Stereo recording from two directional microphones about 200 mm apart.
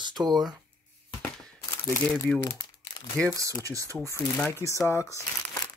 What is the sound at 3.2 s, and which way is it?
Speech, 15° right (ahead or behind).